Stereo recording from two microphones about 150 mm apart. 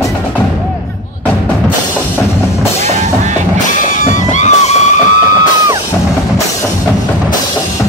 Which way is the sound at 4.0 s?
50° left (ahead or behind).